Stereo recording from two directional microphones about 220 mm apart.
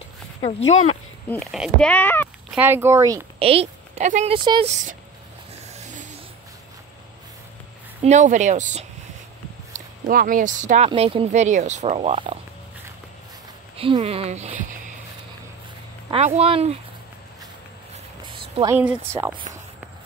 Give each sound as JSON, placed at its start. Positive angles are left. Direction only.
{"t": 0.4, "sound": "speech", "side_deg": 25}
{"t": 1.3, "sound": "speech", "side_deg": 0}
{"t": 2.5, "sound": "a woman's voice", "side_deg": -10}
{"t": 3.3, "sound": "speech", "side_deg": -25}
{"t": 5.7, "sound": "vehicle", "side_deg": -35}
{"t": 8.0, "sound": "speech", "side_deg": -30}
{"t": 13.7, "sound": "speech", "side_deg": -25}
{"t": 16.1, "sound": "speech", "side_deg": -30}
{"t": 18.6, "sound": "a woman's voice", "side_deg": -10}